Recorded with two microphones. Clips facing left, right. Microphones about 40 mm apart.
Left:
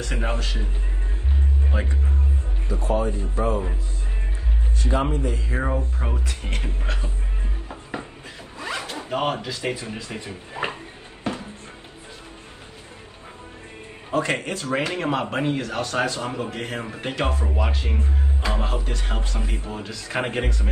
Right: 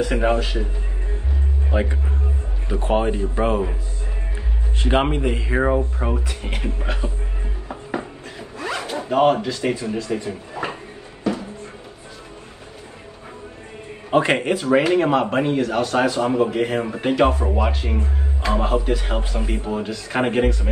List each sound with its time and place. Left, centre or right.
0.0 s speech: centre
1.7 s speech: centre
2.7 s speech: right
4.7 s speech: right
5.6 s speech: centre
7.6 s zipper: centre
9.1 s a man's voice: centre
9.8 s speech: left
11.3 s music: left
14.1 s speech: right
14.4 s a man's voice: centre
19.9 s a man's voice: centre